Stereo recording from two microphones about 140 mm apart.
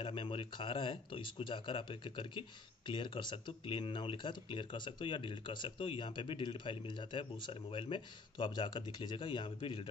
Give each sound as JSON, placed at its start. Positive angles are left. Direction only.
{"t": 0.0, "sound": "speech", "side_deg": 35}